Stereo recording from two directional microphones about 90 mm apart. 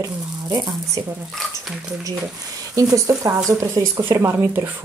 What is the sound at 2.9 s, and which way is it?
Speech, 35° right (ahead or behind).